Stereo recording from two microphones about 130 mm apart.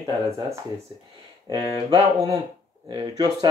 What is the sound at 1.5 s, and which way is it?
Speech, 25° right (ahead or behind).